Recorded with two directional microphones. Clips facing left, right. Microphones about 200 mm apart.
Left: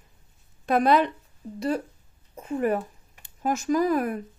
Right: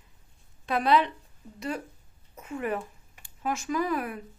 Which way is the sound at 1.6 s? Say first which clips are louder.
Left 7 dB; 35° left (ahead or behind).